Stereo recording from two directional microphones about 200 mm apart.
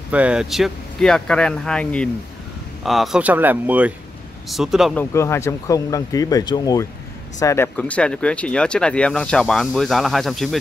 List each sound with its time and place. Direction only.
0.1 s speech: 5° right (ahead or behind)
5.1 s speech: 15° left (ahead or behind)